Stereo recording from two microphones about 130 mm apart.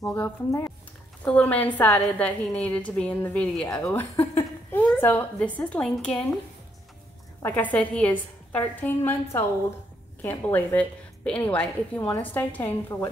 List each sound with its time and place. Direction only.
0.5 s speech: 25° left (ahead or behind)
1.2 s a woman's voice: 10° left (ahead or behind)
7.4 s a woman's voice: 15° left (ahead or behind)